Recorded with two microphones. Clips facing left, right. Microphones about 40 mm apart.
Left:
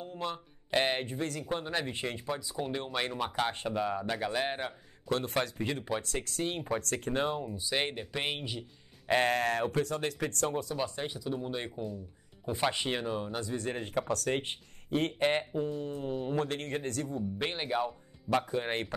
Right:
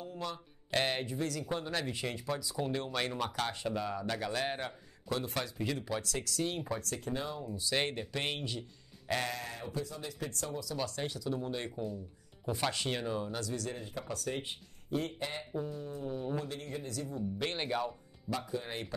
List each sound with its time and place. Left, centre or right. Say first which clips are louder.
0.0 s a sound: left 3 dB; left
0.7 s speech: left 3 dB; left
1.0 s speech: left 1 dB; left; by 4.7 s centre
5.1 s speech: left 5 dB; left
6.8 s speech: left 6 dB; left
7.4 s speech: left 1 dB; centre
9.0 s a sound: left 7 dB; left
9.3 s speech: left 11 dB; left
11.0 s speech: left 1 dB; centre
11.7 s speech: left 1 dB; centre
12.4 s speech: left 3 dB; left
13.7 s speech: left 8 dB; left
17.6 s speech: left 4 dB; centre
18.3 s speech: left 7 dB; left